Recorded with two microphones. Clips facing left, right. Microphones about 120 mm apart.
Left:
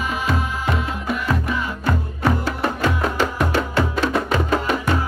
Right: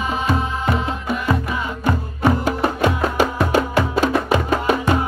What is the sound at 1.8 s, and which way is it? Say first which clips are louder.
Music: right 2 dB; 15° right (ahead or behind).